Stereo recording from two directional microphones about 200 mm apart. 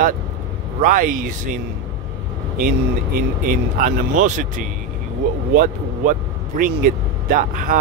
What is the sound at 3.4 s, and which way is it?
A man's voice, 45° right (ahead or behind).